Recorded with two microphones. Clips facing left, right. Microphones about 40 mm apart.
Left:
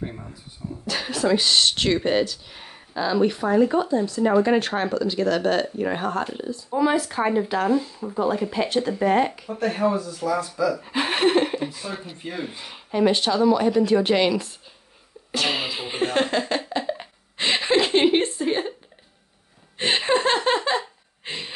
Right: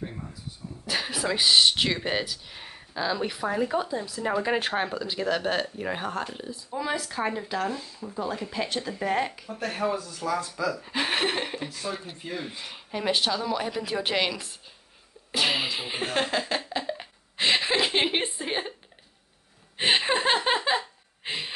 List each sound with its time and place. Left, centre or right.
0.0 s speech: centre
0.8 s speech: centre
15.3 s music: centre
19.8 s speech: centre
21.2 s a sound: centre